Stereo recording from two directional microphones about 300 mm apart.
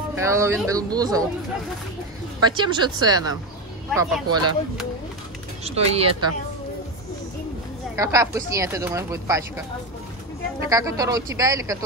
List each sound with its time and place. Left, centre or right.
0.1 s speech: centre
2.4 s speech: centre
5.6 s speech: centre
7.9 s speech: centre
10.7 s speech: centre